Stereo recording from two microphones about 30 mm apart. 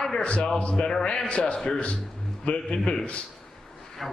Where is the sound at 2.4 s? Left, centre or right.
Left.